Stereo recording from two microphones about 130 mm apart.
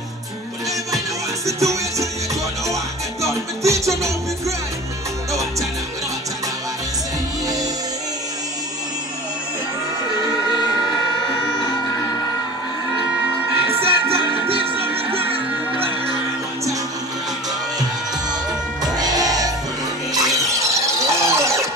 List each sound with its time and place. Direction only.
1.4 s music: 25° right (ahead or behind)
3.6 s music: 25° right (ahead or behind)
13.7 s music: 45° right (ahead or behind)
18.9 s music: 30° right (ahead or behind)